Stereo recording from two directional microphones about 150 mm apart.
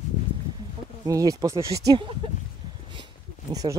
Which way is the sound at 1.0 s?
20° right (ahead or behind).